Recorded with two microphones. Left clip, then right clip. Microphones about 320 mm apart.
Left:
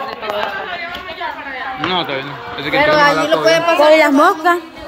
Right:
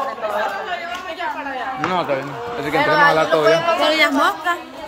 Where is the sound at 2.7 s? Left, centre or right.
Left.